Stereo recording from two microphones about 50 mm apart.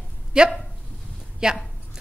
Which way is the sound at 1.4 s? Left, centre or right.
Centre.